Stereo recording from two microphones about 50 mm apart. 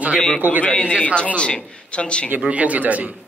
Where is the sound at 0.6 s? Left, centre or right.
Left.